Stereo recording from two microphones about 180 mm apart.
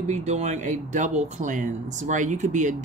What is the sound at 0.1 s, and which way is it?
Speech, 40° right (ahead or behind).